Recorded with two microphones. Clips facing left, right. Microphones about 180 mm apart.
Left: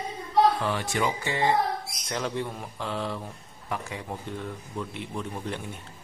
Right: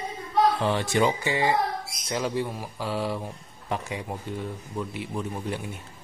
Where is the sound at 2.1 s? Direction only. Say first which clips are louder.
Right 3 dB; 5° right (ahead or behind).